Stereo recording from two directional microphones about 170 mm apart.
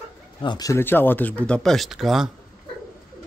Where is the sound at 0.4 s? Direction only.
25° left (ahead or behind); by 2.3 s centre (ahead or behind).